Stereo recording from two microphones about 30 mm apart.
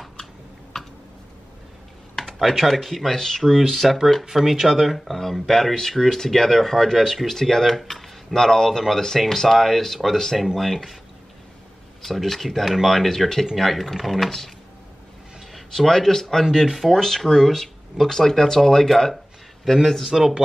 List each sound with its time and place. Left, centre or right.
2.4 s speech: centre
10.3 s speech: centre
10.6 s speech: centre
12.0 s speech: centre
15.7 s speech: centre